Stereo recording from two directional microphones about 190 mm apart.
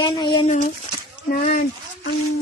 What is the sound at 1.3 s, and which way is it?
Speech, 45° left (ahead or behind).